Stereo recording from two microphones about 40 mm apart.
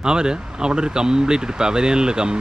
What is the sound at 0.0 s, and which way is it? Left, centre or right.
Speech, centre.